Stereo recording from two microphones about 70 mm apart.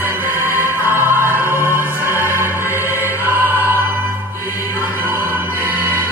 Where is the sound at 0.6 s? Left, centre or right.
Right.